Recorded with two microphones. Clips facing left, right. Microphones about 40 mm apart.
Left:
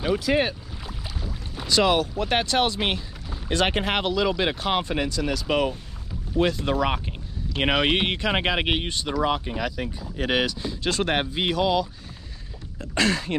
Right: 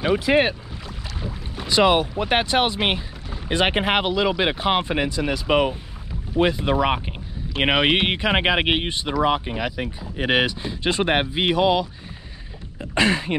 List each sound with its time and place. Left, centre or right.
0.1 s speech: right
1.6 s speech: right